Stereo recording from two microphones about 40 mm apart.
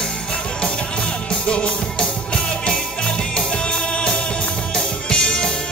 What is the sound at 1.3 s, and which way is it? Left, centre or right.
Music, left.